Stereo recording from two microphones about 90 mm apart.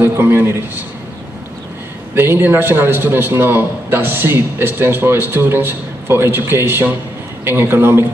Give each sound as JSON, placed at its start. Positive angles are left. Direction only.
{"t": 0.0, "sound": "a man's voice", "side_deg": -25}
{"t": 2.1, "sound": "a man's voice", "side_deg": -25}